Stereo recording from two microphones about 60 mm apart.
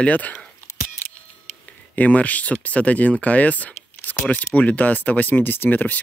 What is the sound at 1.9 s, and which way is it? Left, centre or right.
Speech, left.